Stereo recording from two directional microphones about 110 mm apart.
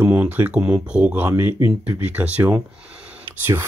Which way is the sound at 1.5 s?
50° left (ahead or behind).